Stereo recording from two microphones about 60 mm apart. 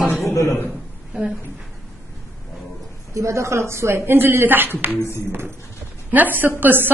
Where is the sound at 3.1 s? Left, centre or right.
Right.